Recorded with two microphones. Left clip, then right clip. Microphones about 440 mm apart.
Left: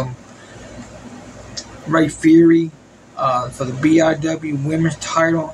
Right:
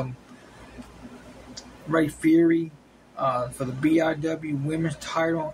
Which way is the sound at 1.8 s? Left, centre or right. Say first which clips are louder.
Left 8 dB; right.